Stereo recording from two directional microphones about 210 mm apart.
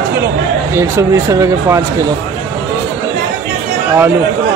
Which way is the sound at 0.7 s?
15° right (ahead or behind).